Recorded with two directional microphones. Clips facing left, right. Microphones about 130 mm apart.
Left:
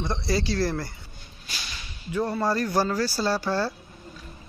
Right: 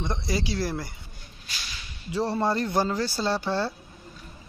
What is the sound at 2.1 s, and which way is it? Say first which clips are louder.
Speech: even; 30° right (ahead or behind).